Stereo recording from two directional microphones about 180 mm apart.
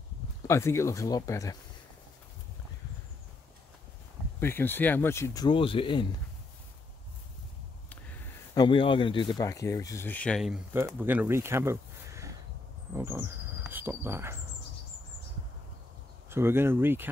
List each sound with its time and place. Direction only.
0.5 s speech: 15° left (ahead or behind)
4.4 s speech: 10° left (ahead or behind); by 6.0 s 30° left (ahead or behind)
8.5 s speech: 30° left (ahead or behind); by 14.4 s 15° right (ahead or behind)
16.3 s speech: 15° right (ahead or behind)